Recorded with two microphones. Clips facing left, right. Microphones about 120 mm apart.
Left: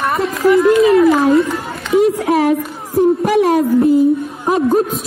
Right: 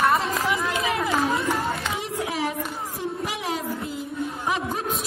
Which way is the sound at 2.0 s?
60° left (ahead or behind).